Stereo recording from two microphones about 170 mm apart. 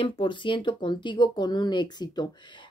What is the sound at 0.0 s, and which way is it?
Speech, 30° left (ahead or behind).